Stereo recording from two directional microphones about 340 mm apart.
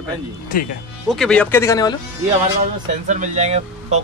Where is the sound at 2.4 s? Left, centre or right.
Right.